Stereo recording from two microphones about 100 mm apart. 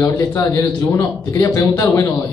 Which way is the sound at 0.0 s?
30° left (ahead or behind).